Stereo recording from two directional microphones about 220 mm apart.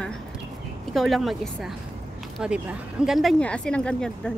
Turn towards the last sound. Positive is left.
turn(degrees=5)  # may be behind; listen again after turning